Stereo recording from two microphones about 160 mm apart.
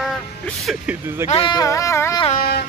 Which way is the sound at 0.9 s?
5° right (ahead or behind).